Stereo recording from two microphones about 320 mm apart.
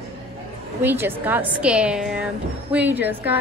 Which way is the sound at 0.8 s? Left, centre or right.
Centre.